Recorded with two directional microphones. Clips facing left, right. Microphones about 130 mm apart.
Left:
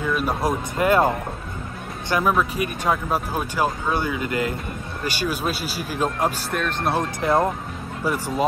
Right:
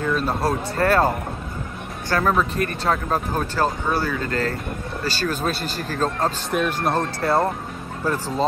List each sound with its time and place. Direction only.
0.0 s speech: 10° left (ahead or behind)
6.5 s speech: 5° right (ahead or behind)
6.9 s speech: 15° left (ahead or behind)